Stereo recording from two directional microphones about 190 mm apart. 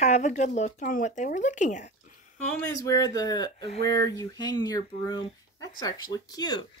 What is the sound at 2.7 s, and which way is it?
Speech, 20° left (ahead or behind).